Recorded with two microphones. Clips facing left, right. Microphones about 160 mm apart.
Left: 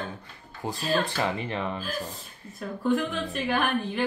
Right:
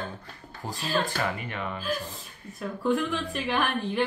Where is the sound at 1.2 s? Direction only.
30° left (ahead or behind).